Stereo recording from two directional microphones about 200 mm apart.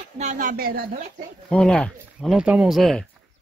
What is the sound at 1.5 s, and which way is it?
Speech, 5° left (ahead or behind).